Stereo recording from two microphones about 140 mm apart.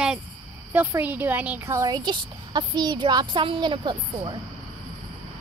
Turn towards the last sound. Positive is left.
turn(degrees=-35)  # may be behind; listen again after turning